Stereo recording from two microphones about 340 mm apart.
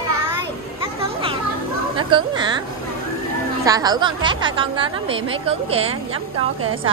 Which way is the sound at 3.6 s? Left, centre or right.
Centre.